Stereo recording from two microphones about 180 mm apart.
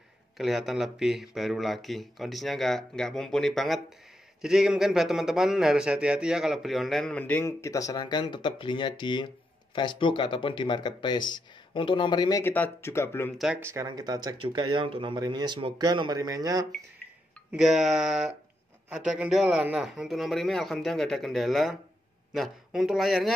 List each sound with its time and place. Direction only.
0.4 s a man's voice: centre (ahead or behind)
13.4 s speech: 10° right (ahead or behind)
17.5 s a man's voice: 5° right (ahead or behind)